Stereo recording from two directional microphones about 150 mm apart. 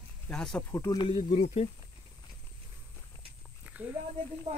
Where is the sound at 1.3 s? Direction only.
50° left (ahead or behind).